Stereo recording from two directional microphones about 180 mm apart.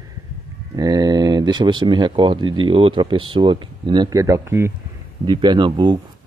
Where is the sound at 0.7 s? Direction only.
20° right (ahead or behind).